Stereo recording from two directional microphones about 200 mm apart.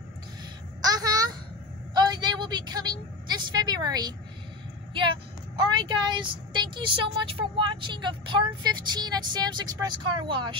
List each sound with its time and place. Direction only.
0.8 s a sound: 20° right (ahead or behind)
2.0 s vehicle: 20° right (ahead or behind)
4.9 s speech: 25° right (ahead or behind)